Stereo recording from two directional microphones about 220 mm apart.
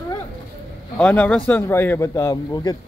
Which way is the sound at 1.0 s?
5° left (ahead or behind).